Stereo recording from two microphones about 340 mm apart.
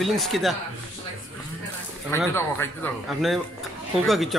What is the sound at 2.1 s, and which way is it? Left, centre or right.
A man's voice, centre.